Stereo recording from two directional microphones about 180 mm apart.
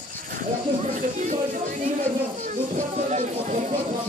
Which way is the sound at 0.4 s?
45° right (ahead or behind).